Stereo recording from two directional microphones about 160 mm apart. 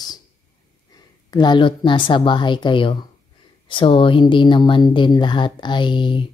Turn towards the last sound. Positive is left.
turn(degrees=30)  # may be behind; listen again after turning